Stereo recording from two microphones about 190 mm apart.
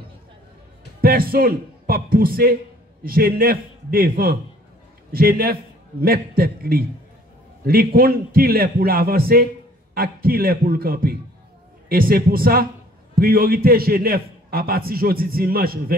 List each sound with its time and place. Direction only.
1.0 s a man's voice: 50° right (ahead or behind)